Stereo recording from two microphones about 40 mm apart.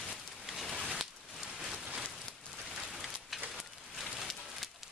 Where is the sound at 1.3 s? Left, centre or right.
Centre.